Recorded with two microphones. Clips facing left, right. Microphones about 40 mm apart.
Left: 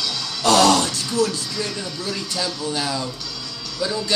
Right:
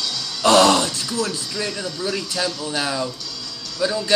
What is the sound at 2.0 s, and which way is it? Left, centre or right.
Speech, centre.